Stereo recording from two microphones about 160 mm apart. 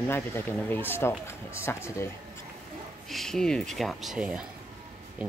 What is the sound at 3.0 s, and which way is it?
Speech, centre (ahead or behind).